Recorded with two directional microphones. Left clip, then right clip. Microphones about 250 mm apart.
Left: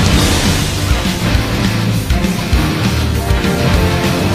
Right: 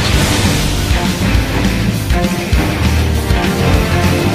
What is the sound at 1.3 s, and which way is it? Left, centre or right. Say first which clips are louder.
Music: even; centre.